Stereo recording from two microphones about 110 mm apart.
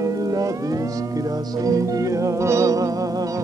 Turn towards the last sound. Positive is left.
turn(degrees=-30)  # may be behind; listen again after turning